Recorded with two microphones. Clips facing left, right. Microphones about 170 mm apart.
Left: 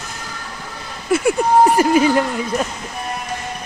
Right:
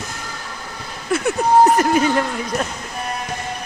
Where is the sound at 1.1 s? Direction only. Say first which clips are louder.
Left 1 dB; 10° left (ahead or behind).